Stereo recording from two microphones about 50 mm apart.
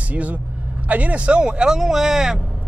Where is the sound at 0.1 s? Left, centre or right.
Right.